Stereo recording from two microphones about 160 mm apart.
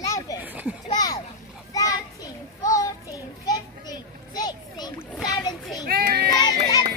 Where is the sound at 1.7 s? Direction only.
20° left (ahead or behind).